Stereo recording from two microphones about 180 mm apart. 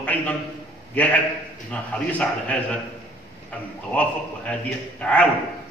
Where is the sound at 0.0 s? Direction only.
10° left (ahead or behind).